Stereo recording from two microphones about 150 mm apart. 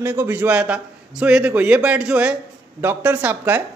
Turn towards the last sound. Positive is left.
turn(degrees=-10)  # may be behind; listen again after turning